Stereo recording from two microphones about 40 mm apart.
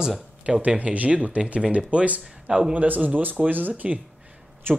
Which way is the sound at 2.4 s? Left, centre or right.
Right.